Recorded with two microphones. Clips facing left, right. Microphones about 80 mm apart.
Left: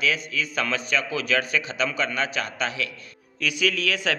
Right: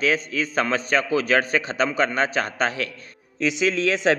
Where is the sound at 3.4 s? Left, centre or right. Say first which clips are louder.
Right 4 dB; right.